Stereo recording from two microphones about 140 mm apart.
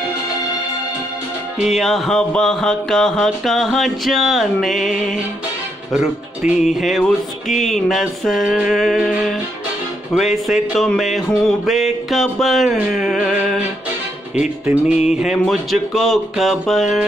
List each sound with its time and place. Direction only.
1.6 s music: centre (ahead or behind)
12.7 s a sound: 5° right (ahead or behind)
15.1 s music: centre (ahead or behind)